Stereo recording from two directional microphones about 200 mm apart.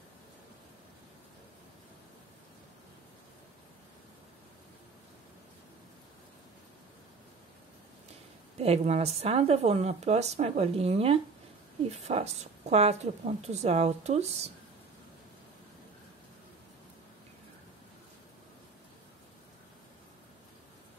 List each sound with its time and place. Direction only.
8.5 s speech: 30° right (ahead or behind)